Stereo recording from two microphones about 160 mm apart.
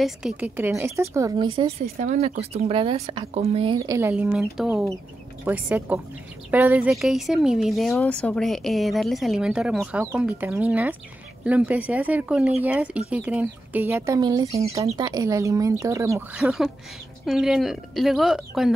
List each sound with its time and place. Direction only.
0.0 s a woman's voice: 5° right (ahead or behind); by 1.7 s 30° right (ahead or behind)
2.0 s speech: 45° right (ahead or behind)
3.7 s speech: 20° right (ahead or behind)
4.1 s a woman's voice: 5° right (ahead or behind)
16.3 s a woman's voice: 5° right (ahead or behind)